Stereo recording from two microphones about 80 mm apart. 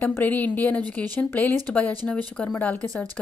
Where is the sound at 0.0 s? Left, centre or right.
Left.